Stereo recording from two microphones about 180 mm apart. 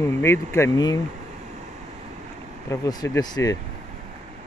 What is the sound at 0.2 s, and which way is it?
Speech, 15° left (ahead or behind).